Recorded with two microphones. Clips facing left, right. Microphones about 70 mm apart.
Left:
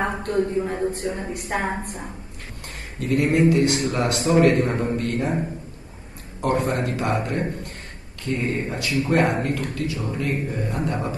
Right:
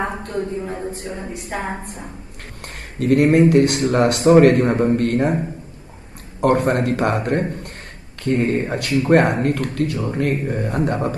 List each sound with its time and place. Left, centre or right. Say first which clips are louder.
0.2 s a woman's voice: left 3 dB; left
3.0 s speech: right 6 dB; right
6.4 s speech: right 6 dB; right